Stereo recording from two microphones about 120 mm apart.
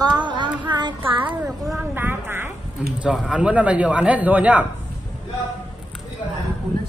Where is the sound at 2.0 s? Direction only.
15° right (ahead or behind).